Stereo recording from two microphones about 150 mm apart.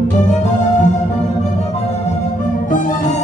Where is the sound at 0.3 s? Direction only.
55° left (ahead or behind).